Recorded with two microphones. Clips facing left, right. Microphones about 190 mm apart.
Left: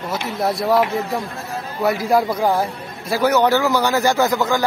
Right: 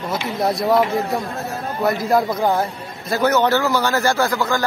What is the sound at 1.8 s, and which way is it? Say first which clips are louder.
A man's voice: left 1 dB; 10° left (ahead or behind).